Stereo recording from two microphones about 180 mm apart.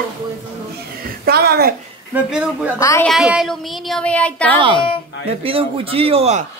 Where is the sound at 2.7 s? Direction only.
15° left (ahead or behind).